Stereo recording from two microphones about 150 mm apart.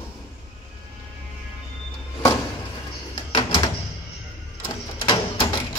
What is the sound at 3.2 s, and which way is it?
Door, 30° left (ahead or behind).